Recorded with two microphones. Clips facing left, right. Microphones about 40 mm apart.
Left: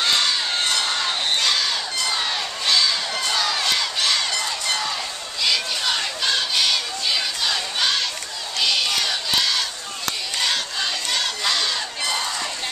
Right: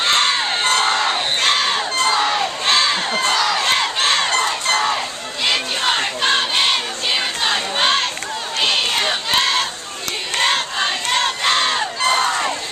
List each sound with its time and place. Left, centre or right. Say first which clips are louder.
0.0 s crowd: right 4 dB; right
0.7 s crowd: right 6 dB; right
5.4 s a sound: right 3 dB; right
8.5 s crowd: right 3 dB; right